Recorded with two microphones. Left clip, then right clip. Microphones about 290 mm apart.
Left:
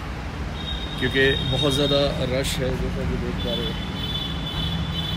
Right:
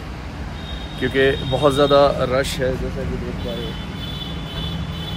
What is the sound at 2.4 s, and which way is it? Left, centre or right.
Speech, centre.